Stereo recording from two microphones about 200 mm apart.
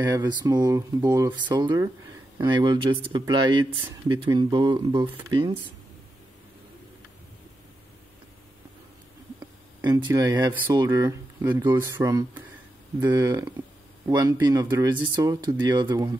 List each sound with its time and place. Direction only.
0.0 s speech: 20° right (ahead or behind)
10.0 s speech: 15° right (ahead or behind)